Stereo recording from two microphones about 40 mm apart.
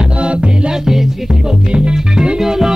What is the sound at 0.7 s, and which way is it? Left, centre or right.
Music, centre.